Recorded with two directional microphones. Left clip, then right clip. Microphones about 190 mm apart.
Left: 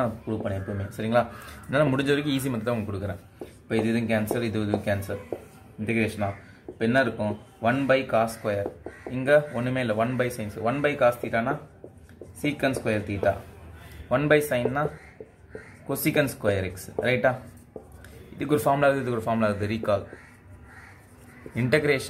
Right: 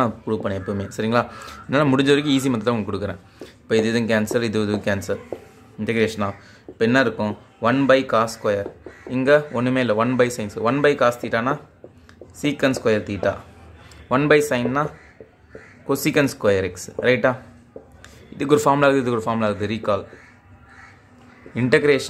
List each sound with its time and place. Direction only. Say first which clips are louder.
0.0 s speech: right 6 dB; 45° right (ahead or behind)
15.9 s speech: right 5 dB; 35° right (ahead or behind)
18.4 s a man's voice: right 6 dB; 35° right (ahead or behind)
21.5 s a man's voice: right 6 dB; 25° right (ahead or behind)